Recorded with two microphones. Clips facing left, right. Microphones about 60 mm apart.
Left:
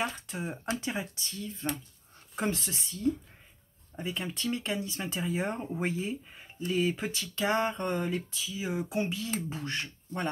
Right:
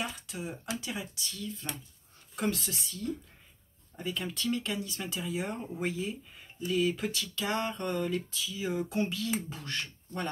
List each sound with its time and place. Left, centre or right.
0.0 s speech: left